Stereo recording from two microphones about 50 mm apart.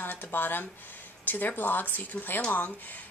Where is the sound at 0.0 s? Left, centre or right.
Left.